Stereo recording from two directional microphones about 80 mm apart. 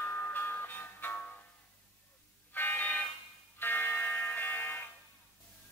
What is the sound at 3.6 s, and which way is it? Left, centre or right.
Music, left.